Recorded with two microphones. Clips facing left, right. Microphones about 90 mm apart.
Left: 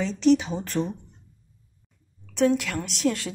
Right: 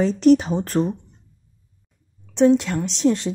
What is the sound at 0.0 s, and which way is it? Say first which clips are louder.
Speech: right 5 dB; 45° right (ahead or behind).